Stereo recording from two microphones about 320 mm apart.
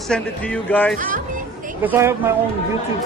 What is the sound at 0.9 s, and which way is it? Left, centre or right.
Speech, right.